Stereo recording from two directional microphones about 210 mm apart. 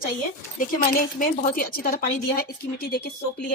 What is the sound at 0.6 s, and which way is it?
A woman's voice, 40° left (ahead or behind).